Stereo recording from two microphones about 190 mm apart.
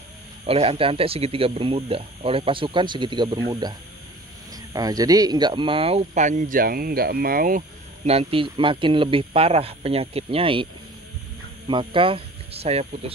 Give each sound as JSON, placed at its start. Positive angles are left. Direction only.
{"t": 0.5, "sound": "speech", "side_deg": -30}
{"t": 4.7, "sound": "speech", "side_deg": -20}